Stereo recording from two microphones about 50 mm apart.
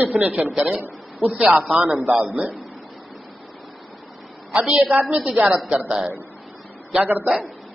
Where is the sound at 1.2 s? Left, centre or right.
Right.